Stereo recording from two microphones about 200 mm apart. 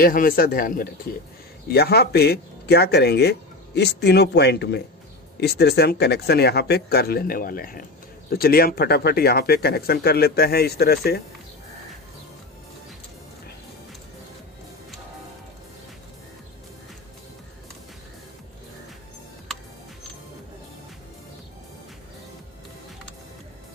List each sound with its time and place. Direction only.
0.0 s speech: 45° left (ahead or behind)